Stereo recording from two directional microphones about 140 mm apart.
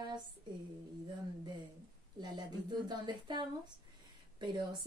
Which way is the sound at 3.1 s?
30° right (ahead or behind).